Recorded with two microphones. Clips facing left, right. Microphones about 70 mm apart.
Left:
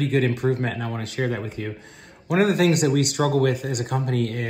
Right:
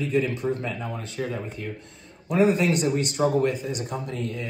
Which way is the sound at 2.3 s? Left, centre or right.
Left.